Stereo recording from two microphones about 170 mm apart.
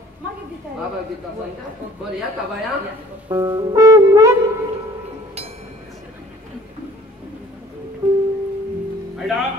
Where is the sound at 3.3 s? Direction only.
20° right (ahead or behind).